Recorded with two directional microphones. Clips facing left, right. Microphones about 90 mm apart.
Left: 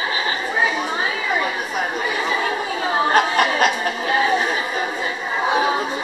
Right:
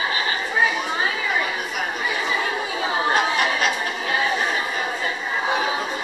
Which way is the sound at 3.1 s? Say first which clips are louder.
Left 4 dB; 50° left (ahead or behind).